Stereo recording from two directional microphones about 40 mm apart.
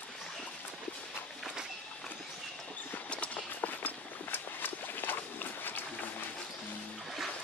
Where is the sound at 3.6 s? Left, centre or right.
Left.